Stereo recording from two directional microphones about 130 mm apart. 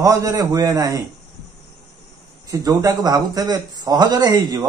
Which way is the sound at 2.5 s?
30° right (ahead or behind).